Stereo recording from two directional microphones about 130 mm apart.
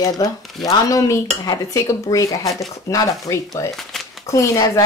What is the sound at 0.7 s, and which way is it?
Dishes, 25° left (ahead or behind).